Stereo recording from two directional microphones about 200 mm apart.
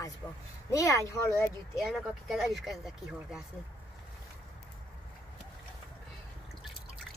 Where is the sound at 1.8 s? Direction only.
Centre (ahead or behind).